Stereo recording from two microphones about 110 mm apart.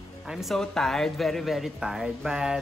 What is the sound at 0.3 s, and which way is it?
Speech, centre (ahead or behind).